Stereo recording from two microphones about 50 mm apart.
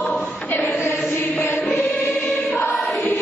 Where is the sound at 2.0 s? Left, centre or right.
Left.